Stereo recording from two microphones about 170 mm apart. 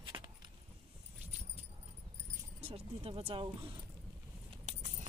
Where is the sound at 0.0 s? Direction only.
25° right (ahead or behind).